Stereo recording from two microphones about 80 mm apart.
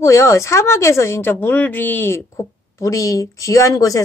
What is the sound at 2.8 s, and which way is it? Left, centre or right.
Speech, left.